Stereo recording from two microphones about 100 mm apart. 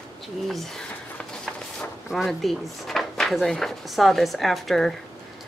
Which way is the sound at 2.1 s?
Centre (ahead or behind).